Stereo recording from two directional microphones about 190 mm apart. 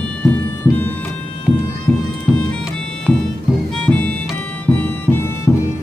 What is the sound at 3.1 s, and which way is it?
Music, centre (ahead or behind).